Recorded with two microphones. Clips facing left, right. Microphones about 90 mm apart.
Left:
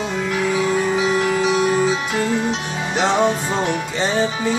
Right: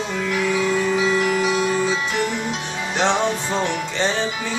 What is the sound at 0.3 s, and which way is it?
Music, 25° left (ahead or behind).